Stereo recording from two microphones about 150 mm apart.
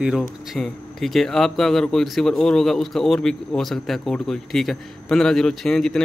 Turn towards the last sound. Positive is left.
turn(degrees=5)  # may be behind; listen again after turning